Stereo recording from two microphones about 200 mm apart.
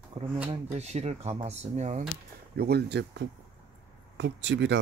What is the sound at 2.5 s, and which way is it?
Speech, 55° right (ahead or behind).